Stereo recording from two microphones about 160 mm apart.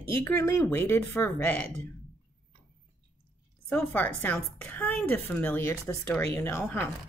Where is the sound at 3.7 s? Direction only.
10° left (ahead or behind).